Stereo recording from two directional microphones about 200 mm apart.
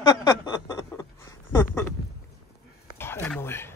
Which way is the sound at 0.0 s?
20° left (ahead or behind).